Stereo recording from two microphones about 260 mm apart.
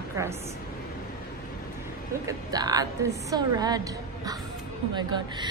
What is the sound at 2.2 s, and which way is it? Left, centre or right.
A woman's voice, centre.